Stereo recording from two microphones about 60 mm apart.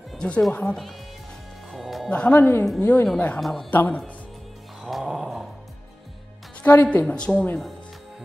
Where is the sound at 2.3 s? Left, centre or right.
Left.